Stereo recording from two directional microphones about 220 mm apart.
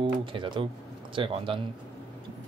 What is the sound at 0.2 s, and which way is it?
Speech, 25° right (ahead or behind).